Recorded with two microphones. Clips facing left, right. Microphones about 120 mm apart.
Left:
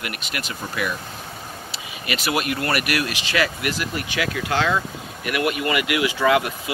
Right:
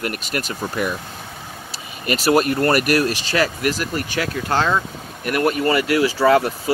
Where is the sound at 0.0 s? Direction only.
40° right (ahead or behind).